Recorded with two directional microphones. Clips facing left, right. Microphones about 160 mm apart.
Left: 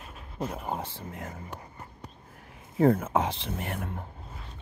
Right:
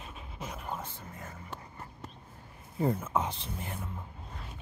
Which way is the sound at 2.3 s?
90° left.